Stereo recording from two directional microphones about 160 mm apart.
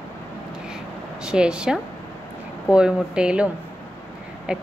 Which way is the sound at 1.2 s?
5° right (ahead or behind).